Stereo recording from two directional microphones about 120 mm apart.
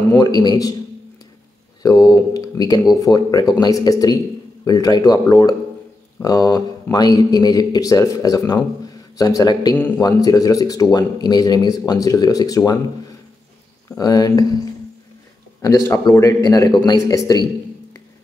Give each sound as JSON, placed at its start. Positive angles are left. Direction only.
{"t": 0.1, "sound": "a man's voice", "side_deg": 35}
{"t": 1.8, "sound": "a man's voice", "side_deg": 30}
{"t": 13.8, "sound": "a man's voice", "side_deg": 30}